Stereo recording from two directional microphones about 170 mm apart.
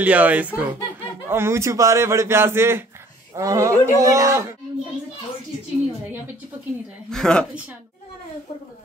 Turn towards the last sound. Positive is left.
turn(degrees=5)  # may be behind; listen again after turning